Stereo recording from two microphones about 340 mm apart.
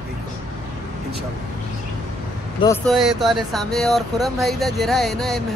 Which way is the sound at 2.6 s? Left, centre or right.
Centre.